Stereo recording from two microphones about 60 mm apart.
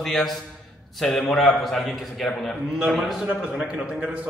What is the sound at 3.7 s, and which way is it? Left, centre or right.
Speech, centre.